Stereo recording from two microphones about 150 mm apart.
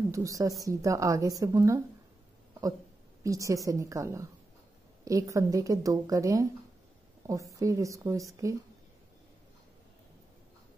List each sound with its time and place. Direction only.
0.1 s a woman's voice: 20° right (ahead or behind)
3.3 s a woman's voice: 20° right (ahead or behind)
7.5 s a woman's voice: 20° right (ahead or behind)